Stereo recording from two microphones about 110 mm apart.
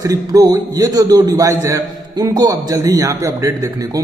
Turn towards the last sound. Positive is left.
turn(degrees=-30)  # may be behind; listen again after turning